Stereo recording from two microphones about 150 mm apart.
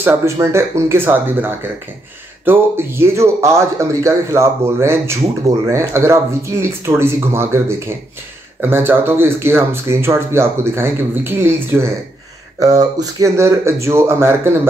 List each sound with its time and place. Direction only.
0.0 s a man's voice: 15° right (ahead or behind)